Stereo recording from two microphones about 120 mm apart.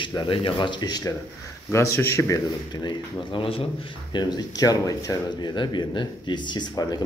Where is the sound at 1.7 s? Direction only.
20° left (ahead or behind).